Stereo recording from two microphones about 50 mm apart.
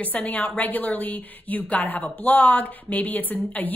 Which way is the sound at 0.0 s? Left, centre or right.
Left.